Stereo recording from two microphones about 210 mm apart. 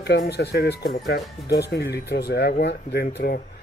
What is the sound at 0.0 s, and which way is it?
Speech, 50° left (ahead or behind).